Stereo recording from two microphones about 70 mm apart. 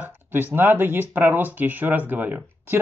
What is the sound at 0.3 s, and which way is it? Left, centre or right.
Speech, right.